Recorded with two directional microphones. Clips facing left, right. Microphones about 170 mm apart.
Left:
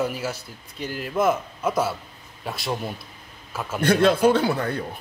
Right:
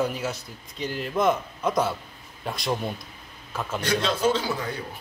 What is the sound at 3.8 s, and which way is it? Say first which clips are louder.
A man's voice: left 7 dB; 55° left (ahead or behind).